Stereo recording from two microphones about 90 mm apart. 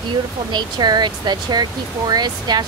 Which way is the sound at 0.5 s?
55° right (ahead or behind).